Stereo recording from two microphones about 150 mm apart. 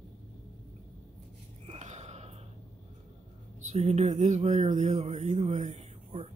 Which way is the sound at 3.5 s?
50° right (ahead or behind).